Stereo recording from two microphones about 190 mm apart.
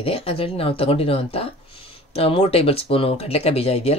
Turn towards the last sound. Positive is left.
turn(degrees=30)  # may be behind; listen again after turning